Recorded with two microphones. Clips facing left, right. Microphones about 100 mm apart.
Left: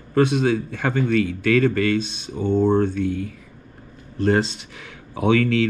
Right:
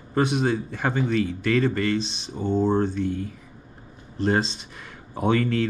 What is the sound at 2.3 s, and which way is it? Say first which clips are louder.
Speech: left 4 dB; 10° right (ahead or behind).